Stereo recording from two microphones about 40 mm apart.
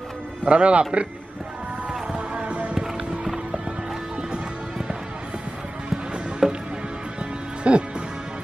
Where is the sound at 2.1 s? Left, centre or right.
Right.